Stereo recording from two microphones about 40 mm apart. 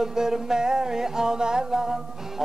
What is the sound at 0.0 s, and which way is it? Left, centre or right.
A man's voice, centre.